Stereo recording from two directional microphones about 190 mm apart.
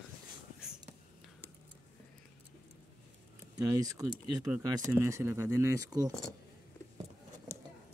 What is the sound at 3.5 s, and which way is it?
Speech, 20° right (ahead or behind).